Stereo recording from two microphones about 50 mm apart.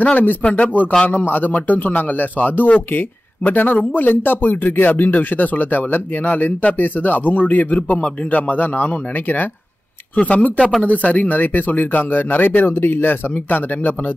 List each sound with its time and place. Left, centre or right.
0.0 s speech: left
1.0 s speech: left